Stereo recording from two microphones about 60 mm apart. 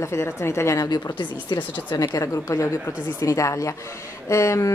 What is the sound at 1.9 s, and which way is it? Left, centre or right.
Speech, left.